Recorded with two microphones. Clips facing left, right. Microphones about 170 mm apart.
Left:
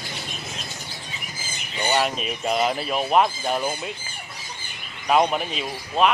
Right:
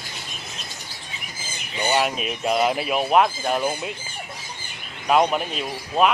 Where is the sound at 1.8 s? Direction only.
5° right (ahead or behind).